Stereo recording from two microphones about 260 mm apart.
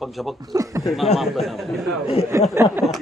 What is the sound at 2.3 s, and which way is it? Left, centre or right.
Speech, centre.